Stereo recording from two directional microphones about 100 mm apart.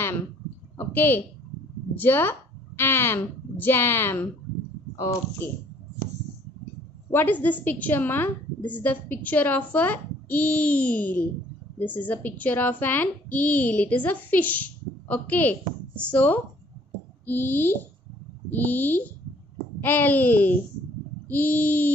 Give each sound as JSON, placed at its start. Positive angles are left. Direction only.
{"t": 0.7, "sound": "a woman's voice", "side_deg": 20}
{"t": 5.4, "sound": "speech", "side_deg": 20}
{"t": 7.1, "sound": "a woman's voice", "side_deg": 20}